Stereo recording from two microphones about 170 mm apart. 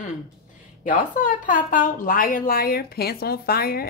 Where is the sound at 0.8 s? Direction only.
50° left (ahead or behind).